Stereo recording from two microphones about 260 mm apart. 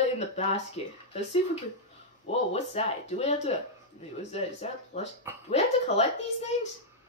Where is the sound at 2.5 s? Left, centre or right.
Left.